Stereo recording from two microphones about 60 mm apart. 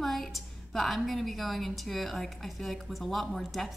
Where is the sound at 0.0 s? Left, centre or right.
Centre.